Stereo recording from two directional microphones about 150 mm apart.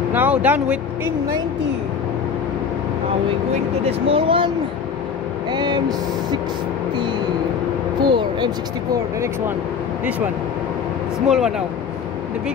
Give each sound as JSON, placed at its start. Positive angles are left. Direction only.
{"t": 0.1, "sound": "speech", "side_deg": -10}
{"t": 3.8, "sound": "speech", "side_deg": -35}
{"t": 5.5, "sound": "speech", "side_deg": -30}
{"t": 8.0, "sound": "speech", "side_deg": -30}
{"t": 11.2, "sound": "speech", "side_deg": -5}